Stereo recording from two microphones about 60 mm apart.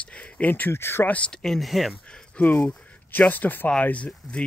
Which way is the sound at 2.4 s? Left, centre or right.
Left.